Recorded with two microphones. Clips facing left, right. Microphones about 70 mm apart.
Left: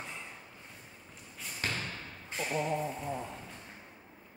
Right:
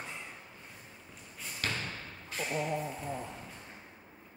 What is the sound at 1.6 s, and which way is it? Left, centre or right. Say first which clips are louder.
Thump: even; left.